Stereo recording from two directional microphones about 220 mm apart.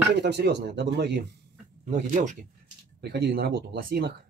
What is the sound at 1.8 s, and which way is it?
Speech, 35° right (ahead or behind).